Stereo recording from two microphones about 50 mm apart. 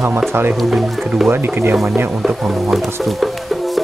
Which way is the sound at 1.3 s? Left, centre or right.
Right.